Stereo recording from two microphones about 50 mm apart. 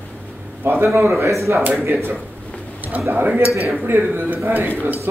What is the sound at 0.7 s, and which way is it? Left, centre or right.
Speech, right.